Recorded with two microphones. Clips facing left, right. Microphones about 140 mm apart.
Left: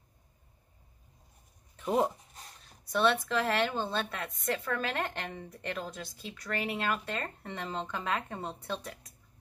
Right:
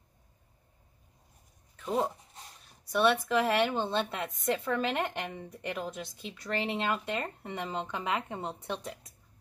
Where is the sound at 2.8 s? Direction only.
10° right (ahead or behind).